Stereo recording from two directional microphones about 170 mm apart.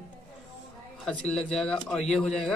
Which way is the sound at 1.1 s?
5° left (ahead or behind).